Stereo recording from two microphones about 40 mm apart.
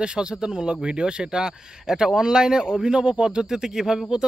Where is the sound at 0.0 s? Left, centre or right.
Right.